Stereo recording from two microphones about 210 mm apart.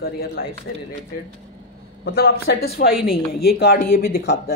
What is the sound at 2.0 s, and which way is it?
Speech, 45° left (ahead or behind).